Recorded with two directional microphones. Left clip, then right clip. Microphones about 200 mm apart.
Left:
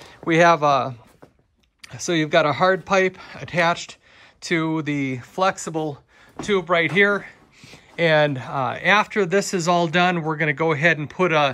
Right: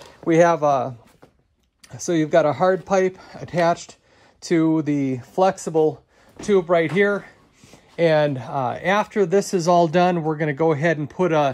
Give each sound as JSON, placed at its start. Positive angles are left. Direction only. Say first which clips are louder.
{"t": 0.2, "sound": "speech", "louder": "even", "side_deg": -15}